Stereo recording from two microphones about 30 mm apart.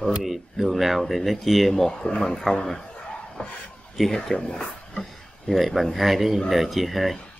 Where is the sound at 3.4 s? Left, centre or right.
Left.